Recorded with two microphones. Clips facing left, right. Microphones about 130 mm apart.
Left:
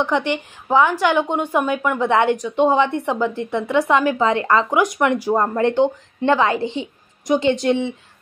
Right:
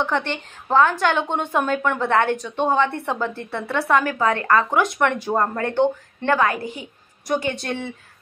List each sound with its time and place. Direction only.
0.0 s a woman's voice: 15° left (ahead or behind)